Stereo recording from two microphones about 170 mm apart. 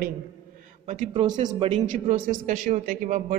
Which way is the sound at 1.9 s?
50° right (ahead or behind).